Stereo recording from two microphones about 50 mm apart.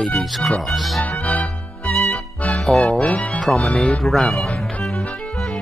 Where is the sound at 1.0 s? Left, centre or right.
Left.